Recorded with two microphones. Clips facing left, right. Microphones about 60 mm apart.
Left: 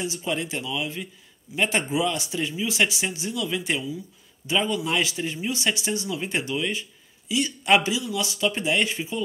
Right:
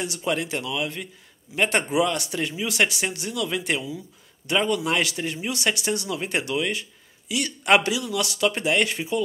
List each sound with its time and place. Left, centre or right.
0.0 s speech: right
4.8 s speech: right